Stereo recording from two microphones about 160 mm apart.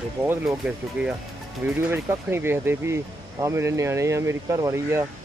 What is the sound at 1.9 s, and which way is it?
Speech, 15° right (ahead or behind).